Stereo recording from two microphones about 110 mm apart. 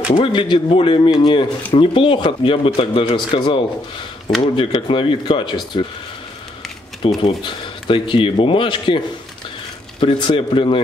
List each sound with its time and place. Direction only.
0.2 s speech: 50° left (ahead or behind)
7.2 s speech: 45° left (ahead or behind)